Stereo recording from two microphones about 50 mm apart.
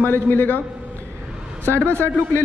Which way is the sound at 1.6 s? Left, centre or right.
Right.